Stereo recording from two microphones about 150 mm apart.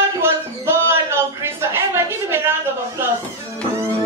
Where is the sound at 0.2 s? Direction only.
15° right (ahead or behind).